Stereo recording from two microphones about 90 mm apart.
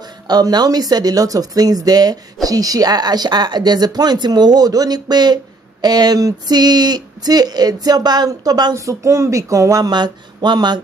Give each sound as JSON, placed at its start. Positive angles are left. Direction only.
{"t": 0.3, "sound": "speech", "side_deg": -50}
{"t": 8.7, "sound": "speech", "side_deg": -35}
{"t": 9.9, "sound": "speech", "side_deg": -55}